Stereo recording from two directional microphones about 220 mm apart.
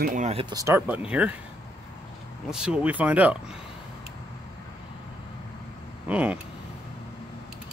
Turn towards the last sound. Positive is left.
turn(degrees=-5)  # may be behind; listen again after turning